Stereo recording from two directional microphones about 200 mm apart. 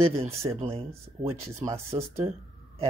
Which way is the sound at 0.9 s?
15° right (ahead or behind).